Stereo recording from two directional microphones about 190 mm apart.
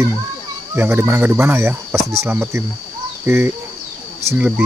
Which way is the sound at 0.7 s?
10° right (ahead or behind).